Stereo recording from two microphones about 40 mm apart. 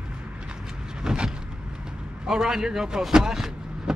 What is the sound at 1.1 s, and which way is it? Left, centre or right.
Vehicle, centre.